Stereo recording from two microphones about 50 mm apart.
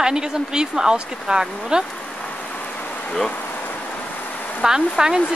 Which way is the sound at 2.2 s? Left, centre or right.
Left.